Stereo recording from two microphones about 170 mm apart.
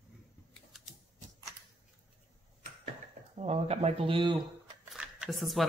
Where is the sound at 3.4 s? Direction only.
40° right (ahead or behind).